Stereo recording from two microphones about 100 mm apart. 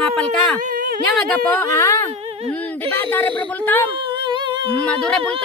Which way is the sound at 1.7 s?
30° left (ahead or behind).